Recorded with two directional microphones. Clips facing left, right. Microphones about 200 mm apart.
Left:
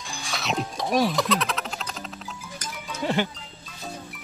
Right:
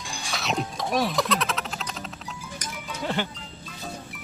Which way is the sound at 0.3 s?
Centre (ahead or behind).